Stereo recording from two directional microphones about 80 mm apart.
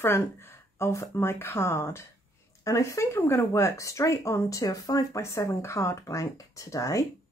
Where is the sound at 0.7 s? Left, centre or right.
Left.